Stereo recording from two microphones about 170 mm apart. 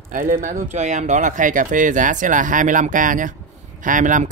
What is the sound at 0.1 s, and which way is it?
Speech, 55° right (ahead or behind).